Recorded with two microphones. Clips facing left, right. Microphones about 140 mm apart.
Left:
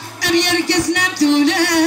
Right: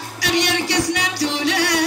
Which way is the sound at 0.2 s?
45° left (ahead or behind).